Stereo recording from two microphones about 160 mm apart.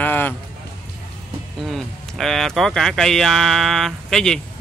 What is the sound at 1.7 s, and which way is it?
Speech, centre (ahead or behind).